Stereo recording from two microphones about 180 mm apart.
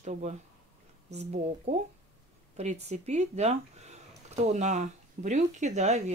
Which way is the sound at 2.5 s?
40° right (ahead or behind).